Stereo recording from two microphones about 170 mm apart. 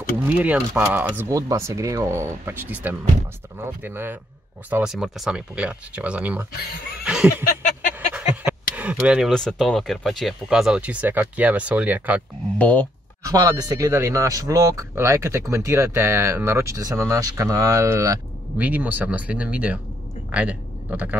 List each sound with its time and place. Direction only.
0.4 s speech: 10° right (ahead or behind)
7.1 s snicker: 5° right (ahead or behind)
8.1 s speech: 10° right (ahead or behind)
12.5 s speech: 10° left (ahead or behind)
13.3 s a man's voice: 25° right (ahead or behind)